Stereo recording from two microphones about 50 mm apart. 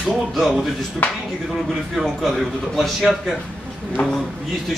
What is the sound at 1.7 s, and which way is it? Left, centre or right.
A man's voice, centre.